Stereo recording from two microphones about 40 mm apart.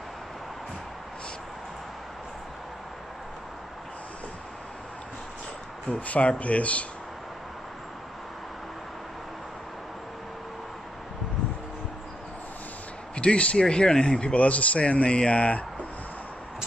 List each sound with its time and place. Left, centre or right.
5.9 s speech: left
13.1 s speech: left
14.2 s speech: left